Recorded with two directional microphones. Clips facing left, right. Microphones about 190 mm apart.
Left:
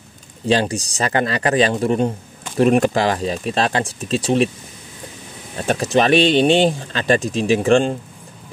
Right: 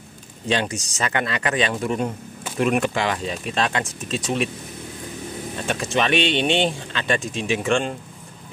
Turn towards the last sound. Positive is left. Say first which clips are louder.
# left 7 dB
turn(degrees=35)  # may be behind; listen again after turning